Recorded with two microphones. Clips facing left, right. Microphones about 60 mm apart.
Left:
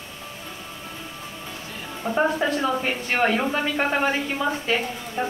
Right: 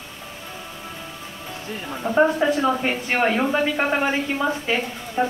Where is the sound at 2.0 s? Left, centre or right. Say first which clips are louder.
Right 4 dB; centre.